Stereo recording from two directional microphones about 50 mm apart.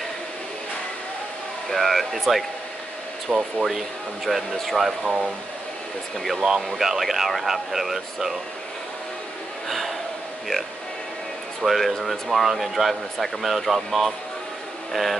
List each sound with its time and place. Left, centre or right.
1.7 s speech: centre
3.3 s speech: centre
3.6 s speech: centre
5.0 s speech: right
6.1 s speech: centre
6.4 s speech: centre
6.8 s speech: centre
9.7 s a sound: centre
11.6 s speech: centre